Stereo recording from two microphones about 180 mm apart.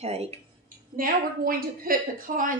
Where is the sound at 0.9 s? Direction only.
50° right (ahead or behind).